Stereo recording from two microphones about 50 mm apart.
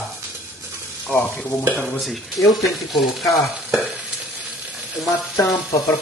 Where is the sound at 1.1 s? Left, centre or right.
Left.